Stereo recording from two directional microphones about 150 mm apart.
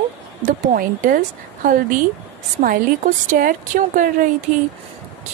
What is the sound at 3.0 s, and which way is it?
A woman's voice, 65° right (ahead or behind).